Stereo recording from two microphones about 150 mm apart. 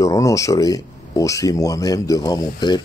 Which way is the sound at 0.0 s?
20° left (ahead or behind).